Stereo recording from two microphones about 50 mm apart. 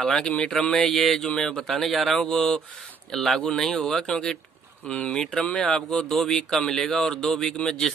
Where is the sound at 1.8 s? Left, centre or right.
Centre.